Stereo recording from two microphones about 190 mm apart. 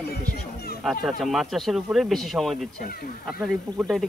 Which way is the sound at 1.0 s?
Centre (ahead or behind).